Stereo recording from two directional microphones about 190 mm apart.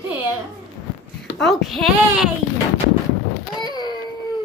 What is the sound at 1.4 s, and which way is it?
Speech, centre (ahead or behind).